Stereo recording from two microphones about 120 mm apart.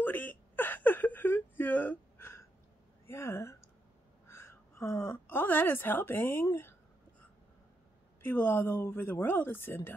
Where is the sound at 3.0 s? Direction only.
20° left (ahead or behind).